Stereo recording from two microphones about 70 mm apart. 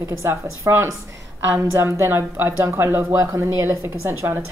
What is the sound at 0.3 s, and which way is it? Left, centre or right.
Speech, right.